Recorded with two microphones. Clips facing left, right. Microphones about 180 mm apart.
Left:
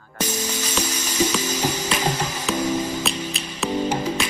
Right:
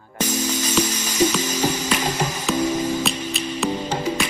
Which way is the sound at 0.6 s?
10° right (ahead or behind).